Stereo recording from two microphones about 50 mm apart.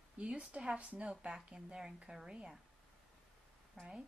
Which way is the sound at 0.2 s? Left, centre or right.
Right.